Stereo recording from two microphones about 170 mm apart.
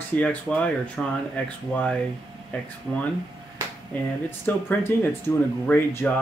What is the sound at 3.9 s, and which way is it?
Speech, 10° left (ahead or behind).